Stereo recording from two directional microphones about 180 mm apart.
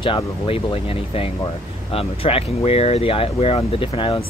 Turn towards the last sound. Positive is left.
turn(degrees=30)  # may be behind; listen again after turning